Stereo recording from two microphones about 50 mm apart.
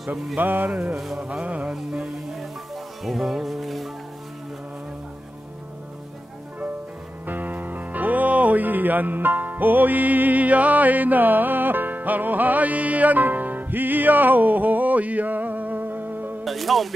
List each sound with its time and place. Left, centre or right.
0.4 s music: right
0.9 s speech: centre
1.4 s music: right
1.7 s music: centre
7.2 s music: right
16.4 s speech: centre